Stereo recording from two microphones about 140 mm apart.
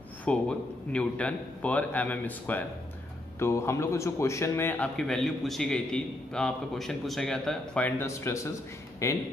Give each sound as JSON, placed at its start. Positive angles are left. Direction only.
{"t": 0.2, "sound": "a man's voice", "side_deg": 10}
{"t": 8.0, "sound": "speech", "side_deg": 20}